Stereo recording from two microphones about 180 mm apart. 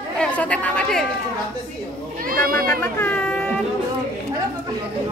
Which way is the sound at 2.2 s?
55° right (ahead or behind).